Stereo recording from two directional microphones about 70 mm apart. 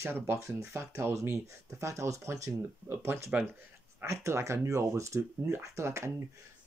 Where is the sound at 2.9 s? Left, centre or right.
Right.